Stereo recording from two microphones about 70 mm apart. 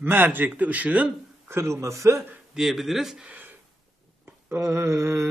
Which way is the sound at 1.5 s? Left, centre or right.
Right.